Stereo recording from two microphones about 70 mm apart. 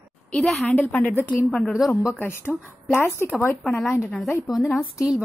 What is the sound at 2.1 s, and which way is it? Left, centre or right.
Speech, left.